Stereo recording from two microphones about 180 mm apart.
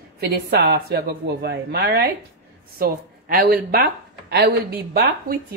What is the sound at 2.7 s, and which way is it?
A woman's voice, 55° right (ahead or behind).